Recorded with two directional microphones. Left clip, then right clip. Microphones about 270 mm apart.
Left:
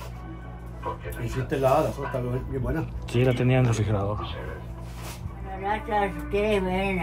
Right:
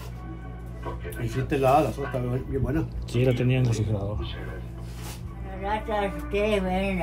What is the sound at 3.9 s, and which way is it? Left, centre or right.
Speech, left.